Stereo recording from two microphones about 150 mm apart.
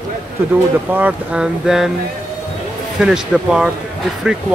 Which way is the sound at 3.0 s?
5° right (ahead or behind).